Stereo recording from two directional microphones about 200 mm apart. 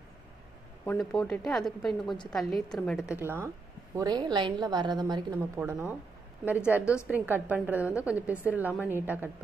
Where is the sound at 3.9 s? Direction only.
20° right (ahead or behind).